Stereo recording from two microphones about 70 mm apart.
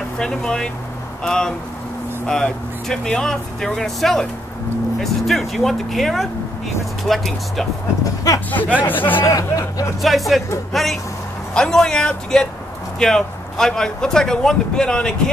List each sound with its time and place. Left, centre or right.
0.2 s speech: centre
8.0 s speech: left
8.5 s speech: left
9.2 s speech: left
10.0 s speech: centre